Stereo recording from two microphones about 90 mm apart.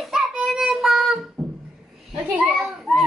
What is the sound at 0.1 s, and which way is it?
Child singing, 5° right (ahead or behind).